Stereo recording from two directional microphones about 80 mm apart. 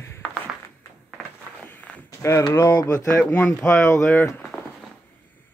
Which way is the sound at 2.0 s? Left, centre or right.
Left.